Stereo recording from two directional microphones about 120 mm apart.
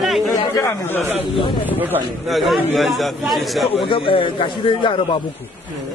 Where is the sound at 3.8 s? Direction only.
45° left (ahead or behind).